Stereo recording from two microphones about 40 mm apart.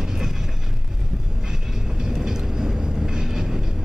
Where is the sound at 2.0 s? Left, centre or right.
Centre.